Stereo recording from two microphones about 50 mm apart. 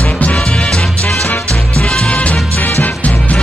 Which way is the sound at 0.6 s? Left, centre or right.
Centre.